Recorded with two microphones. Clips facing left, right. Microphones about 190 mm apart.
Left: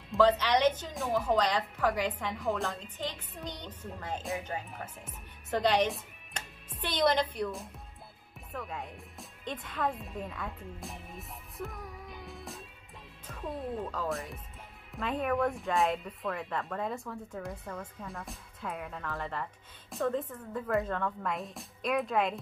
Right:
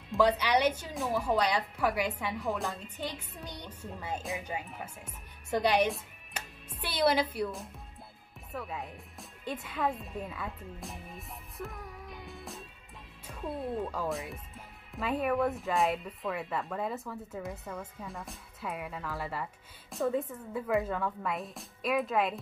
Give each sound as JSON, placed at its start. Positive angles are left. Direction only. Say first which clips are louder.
{"t": 0.2, "sound": "a woman's voice", "louder": "left 1 dB", "side_deg": -10}
{"t": 13.3, "sound": "music", "louder": "even", "side_deg": -5}
{"t": 14.0, "sound": "a woman's voice", "louder": "even", "side_deg": -10}